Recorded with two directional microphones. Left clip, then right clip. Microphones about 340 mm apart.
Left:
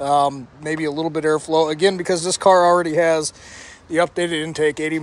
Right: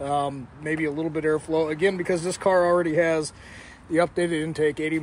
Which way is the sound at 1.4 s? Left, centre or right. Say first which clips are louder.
Left 6 dB; left.